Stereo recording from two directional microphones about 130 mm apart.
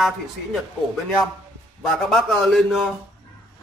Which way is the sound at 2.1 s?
5° left (ahead or behind).